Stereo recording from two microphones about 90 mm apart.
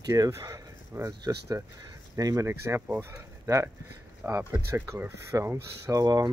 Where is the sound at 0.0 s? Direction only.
40° right (ahead or behind).